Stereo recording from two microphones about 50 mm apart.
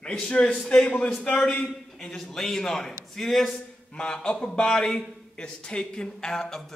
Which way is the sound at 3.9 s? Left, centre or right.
Centre.